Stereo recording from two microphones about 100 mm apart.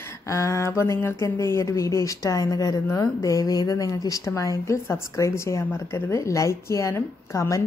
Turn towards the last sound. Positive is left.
turn(degrees=30)  # may be behind; listen again after turning